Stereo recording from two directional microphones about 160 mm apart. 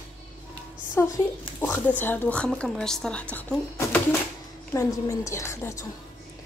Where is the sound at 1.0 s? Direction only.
15° left (ahead or behind).